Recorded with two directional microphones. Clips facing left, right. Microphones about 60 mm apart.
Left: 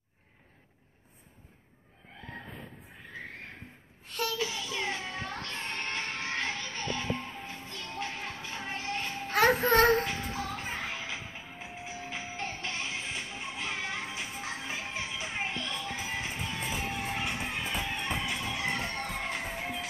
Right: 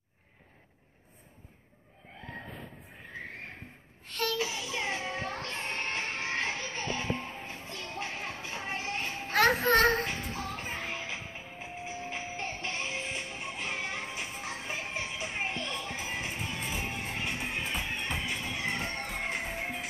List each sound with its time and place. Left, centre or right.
4.1 s a sound: centre
4.4 s music: centre
9.3 s music: centre
10.1 s music: centre